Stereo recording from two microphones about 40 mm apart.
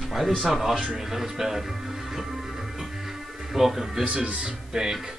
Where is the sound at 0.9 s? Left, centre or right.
Centre.